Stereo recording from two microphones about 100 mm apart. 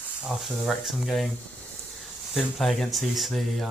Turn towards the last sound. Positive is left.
turn(degrees=0)  # may be behind; listen again after turning